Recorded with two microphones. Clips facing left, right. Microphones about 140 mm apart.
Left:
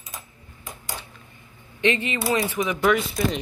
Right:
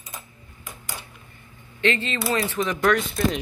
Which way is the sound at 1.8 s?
15° left (ahead or behind).